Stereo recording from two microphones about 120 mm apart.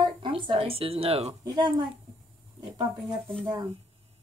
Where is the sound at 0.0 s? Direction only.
45° right (ahead or behind).